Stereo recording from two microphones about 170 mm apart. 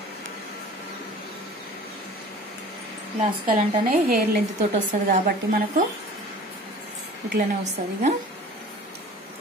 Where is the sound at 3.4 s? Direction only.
55° right (ahead or behind).